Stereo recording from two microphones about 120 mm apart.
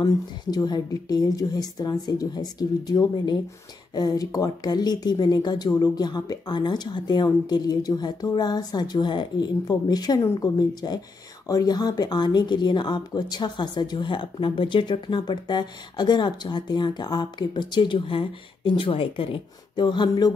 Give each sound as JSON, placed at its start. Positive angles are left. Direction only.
{"t": 0.0, "sound": "speech", "side_deg": 35}
{"t": 10.2, "sound": "speech", "side_deg": 20}
{"t": 10.7, "sound": "speech", "side_deg": 35}